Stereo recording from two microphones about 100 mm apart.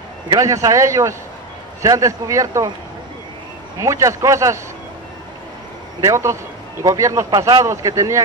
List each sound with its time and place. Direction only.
0.4 s speech: 35° right (ahead or behind)
3.8 s speech: 30° right (ahead or behind)
5.9 s speech: 30° right (ahead or behind)